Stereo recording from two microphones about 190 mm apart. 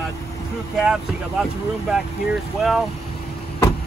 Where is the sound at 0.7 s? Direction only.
5° right (ahead or behind).